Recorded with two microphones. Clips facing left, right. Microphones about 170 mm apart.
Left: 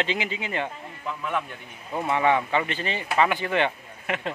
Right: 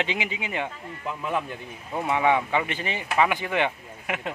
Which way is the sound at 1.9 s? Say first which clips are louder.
Even; centre (ahead or behind).